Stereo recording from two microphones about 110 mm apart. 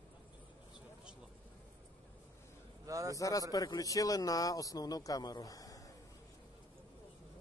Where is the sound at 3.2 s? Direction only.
30° left (ahead or behind).